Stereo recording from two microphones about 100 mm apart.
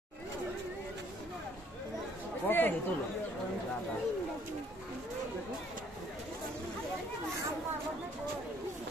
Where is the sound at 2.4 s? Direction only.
20° left (ahead or behind).